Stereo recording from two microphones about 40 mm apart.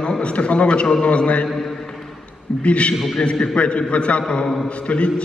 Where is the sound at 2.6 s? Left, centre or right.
Left.